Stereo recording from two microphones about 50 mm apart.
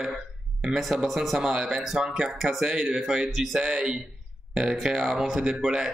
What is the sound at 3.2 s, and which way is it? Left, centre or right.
Speech, centre.